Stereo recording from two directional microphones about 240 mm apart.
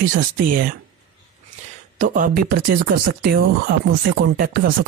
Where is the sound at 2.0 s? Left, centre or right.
Right.